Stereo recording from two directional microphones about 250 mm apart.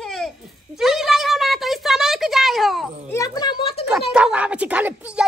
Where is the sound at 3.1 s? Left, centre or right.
Centre.